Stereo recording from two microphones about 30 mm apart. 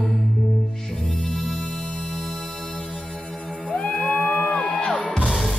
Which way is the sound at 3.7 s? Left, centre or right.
Left.